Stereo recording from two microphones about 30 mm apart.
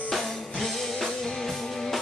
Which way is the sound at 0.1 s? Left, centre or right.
Centre.